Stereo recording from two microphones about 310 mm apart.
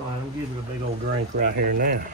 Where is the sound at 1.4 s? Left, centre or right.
Right.